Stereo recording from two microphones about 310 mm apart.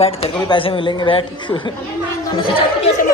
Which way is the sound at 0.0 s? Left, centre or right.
Centre.